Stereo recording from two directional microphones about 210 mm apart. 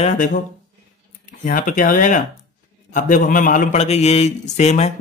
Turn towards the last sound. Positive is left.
turn(degrees=30)  # may be behind; listen again after turning